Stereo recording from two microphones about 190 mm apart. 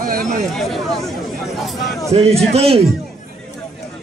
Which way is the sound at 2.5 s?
30° right (ahead or behind).